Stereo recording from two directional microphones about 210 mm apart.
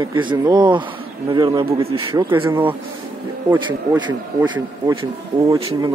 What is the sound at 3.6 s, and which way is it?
Speech, 20° right (ahead or behind).